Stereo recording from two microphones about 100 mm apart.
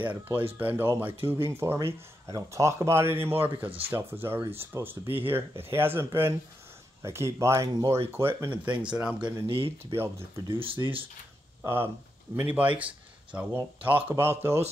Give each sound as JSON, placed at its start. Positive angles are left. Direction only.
{"t": 0.0, "sound": "speech", "side_deg": -20}
{"t": 8.2, "sound": "speech", "side_deg": -25}
{"t": 9.2, "sound": "speech", "side_deg": -60}
{"t": 9.9, "sound": "speech", "side_deg": -25}
{"t": 10.6, "sound": "speech", "side_deg": -65}
{"t": 11.6, "sound": "a man's voice", "side_deg": -25}